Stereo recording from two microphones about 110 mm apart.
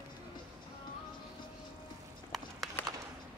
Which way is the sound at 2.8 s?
15° left (ahead or behind).